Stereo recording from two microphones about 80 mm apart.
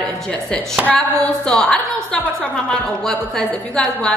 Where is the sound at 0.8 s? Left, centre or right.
Centre.